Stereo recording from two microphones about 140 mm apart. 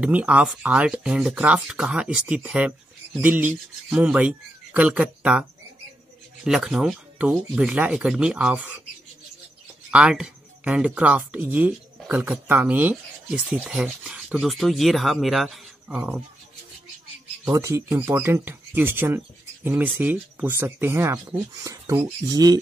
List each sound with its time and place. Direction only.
0.0 s speech: 10° right (ahead or behind)
9.8 s speech: 5° right (ahead or behind)
13.5 s speech: centre (ahead or behind)
17.5 s speech: 20° right (ahead or behind)